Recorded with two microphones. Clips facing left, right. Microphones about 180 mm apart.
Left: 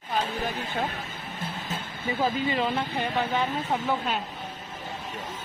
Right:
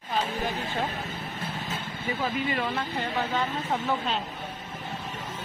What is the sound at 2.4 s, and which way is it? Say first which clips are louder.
Speech: left 2 dB; 25° left (ahead or behind).